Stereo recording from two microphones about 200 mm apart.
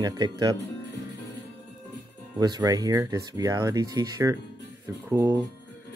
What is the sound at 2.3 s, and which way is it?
Speech, 20° right (ahead or behind).